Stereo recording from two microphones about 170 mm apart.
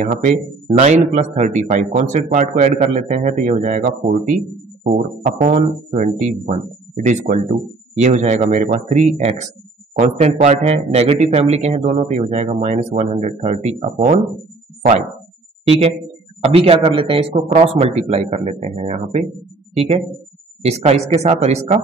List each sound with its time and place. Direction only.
0.0 s a man's voice: 45° right (ahead or behind)
15.6 s a man's voice: 35° right (ahead or behind)